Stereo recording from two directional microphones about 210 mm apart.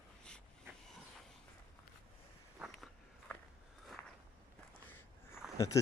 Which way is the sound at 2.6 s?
Centre (ahead or behind).